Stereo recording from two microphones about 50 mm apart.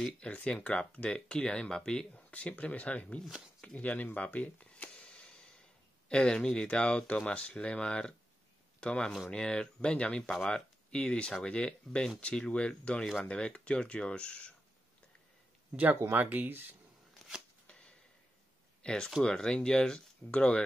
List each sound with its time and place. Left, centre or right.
0.2 s speech: left
2.1 s speech: left
3.6 s a sound: left
6.0 s speech: centre
16.1 s speech: right
17.6 s a sound: centre
19.2 s speech: centre